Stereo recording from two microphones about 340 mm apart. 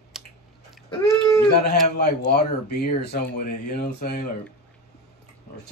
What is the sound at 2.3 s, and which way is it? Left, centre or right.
Speech, left.